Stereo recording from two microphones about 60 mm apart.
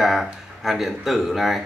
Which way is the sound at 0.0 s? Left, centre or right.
Centre.